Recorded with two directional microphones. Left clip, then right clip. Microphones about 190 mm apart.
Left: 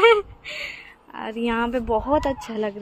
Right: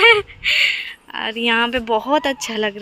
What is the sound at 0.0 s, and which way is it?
Speech, 5° right (ahead or behind).